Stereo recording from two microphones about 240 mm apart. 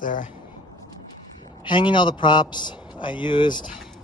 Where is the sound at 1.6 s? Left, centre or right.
Centre.